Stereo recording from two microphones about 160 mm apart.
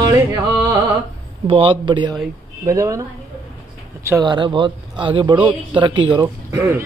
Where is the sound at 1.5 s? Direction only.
35° right (ahead or behind).